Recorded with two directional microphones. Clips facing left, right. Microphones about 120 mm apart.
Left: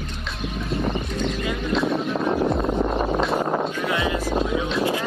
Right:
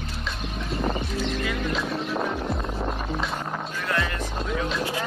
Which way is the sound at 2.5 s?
55° left (ahead or behind).